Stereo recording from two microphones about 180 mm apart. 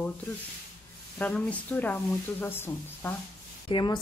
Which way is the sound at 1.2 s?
10° left (ahead or behind).